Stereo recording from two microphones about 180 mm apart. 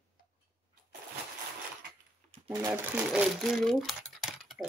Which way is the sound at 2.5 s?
20° right (ahead or behind).